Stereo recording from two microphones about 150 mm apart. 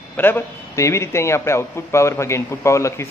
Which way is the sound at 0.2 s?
15° left (ahead or behind).